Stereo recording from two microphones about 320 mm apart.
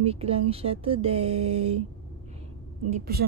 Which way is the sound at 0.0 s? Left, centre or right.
Centre.